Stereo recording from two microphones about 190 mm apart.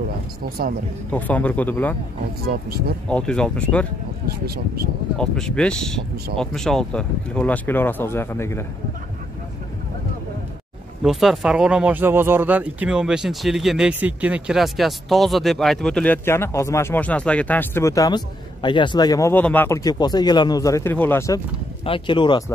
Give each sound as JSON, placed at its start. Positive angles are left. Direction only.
{"t": 1.1, "sound": "speech", "side_deg": 10}
{"t": 3.1, "sound": "speech", "side_deg": 5}
{"t": 5.1, "sound": "speech", "side_deg": 5}
{"t": 11.0, "sound": "speech", "side_deg": 0}
{"t": 21.8, "sound": "speech", "side_deg": 25}